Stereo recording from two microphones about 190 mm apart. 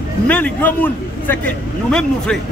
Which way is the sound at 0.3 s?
10° left (ahead or behind).